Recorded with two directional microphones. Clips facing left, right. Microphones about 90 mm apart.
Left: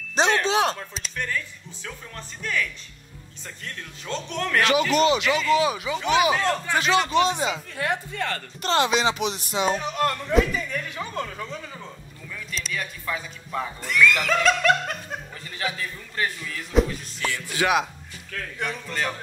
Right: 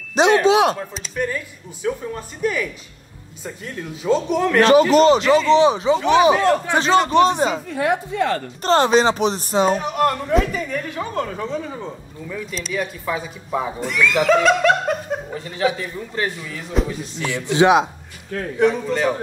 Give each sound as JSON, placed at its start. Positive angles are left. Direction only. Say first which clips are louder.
{"t": 0.1, "sound": "wind chime", "louder": "right 7 dB", "side_deg": -10}
{"t": 0.9, "sound": "a woman's voice", "louder": "right 6 dB", "side_deg": 0}
{"t": 1.2, "sound": "speech", "louder": "right 6 dB", "side_deg": -10}
{"t": 4.6, "sound": "speech", "louder": "right 8 dB", "side_deg": -35}
{"t": 6.3, "sound": "speech", "louder": "right 6 dB", "side_deg": -15}
{"t": 6.8, "sound": "speech", "louder": "right 6 dB", "side_deg": -40}
{"t": 7.6, "sound": "a woman's voice", "louder": "right 7 dB", "side_deg": -5}
{"t": 8.6, "sound": "speech", "louder": "right 7 dB", "side_deg": -40}
{"t": 9.8, "sound": "speech", "louder": "right 6 dB", "side_deg": -20}
{"t": 11.1, "sound": "speech", "louder": "right 9 dB", "side_deg": -25}
{"t": 12.3, "sound": "speech", "louder": "right 6 dB", "side_deg": -5}
{"t": 16.7, "sound": "a woman's voice", "louder": "left 1 dB", "side_deg": -5}
{"t": 17.2, "sound": "speech", "louder": "right 9 dB", "side_deg": -20}
{"t": 18.6, "sound": "speech", "louder": "right 12 dB", "side_deg": -5}